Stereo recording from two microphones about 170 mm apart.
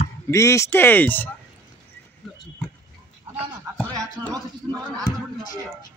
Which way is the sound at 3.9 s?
20° right (ahead or behind).